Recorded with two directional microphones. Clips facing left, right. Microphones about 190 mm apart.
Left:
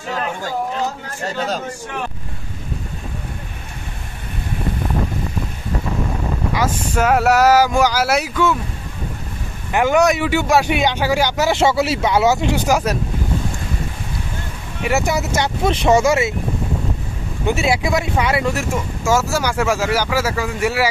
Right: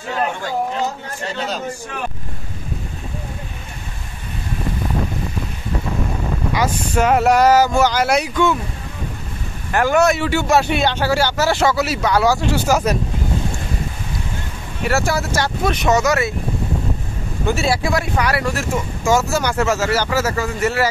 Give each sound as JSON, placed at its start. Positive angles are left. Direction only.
{"t": 1.2, "sound": "speech", "side_deg": 45}
{"t": 6.6, "sound": "speech", "side_deg": 5}
{"t": 9.7, "sound": "speech", "side_deg": 15}
{"t": 14.9, "sound": "speech", "side_deg": 20}
{"t": 17.5, "sound": "speech", "side_deg": 20}
{"t": 19.0, "sound": "speech", "side_deg": 5}